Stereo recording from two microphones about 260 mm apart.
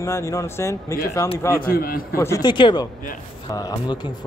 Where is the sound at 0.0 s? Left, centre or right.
Centre.